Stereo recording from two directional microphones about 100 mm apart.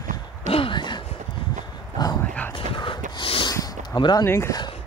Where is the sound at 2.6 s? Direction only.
60° left (ahead or behind).